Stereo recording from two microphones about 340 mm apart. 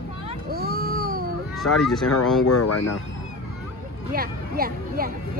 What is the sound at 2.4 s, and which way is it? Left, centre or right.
Speech, left.